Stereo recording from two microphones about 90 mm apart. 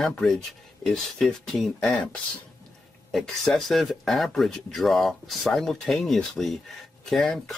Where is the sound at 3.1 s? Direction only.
Centre (ahead or behind).